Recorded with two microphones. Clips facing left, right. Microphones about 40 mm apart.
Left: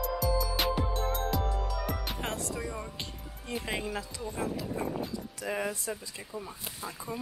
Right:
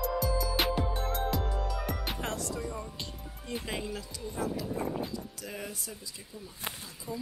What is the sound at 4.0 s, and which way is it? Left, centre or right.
Speech, left.